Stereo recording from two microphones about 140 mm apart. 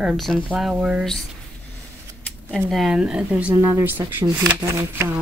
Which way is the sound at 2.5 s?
Centre (ahead or behind).